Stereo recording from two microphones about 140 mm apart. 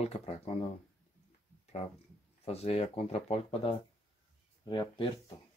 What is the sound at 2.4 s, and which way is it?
Speech, 45° left (ahead or behind).